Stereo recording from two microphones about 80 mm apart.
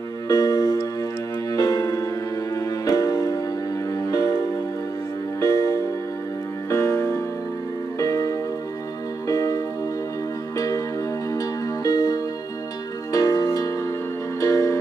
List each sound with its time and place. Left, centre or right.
0.3 s music: left
11.3 s music: left